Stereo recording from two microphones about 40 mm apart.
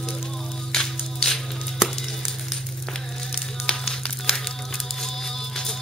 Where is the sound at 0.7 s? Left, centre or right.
Centre.